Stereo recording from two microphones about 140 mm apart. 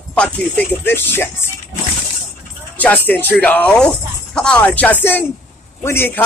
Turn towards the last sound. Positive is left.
turn(degrees=15)  # may be behind; listen again after turning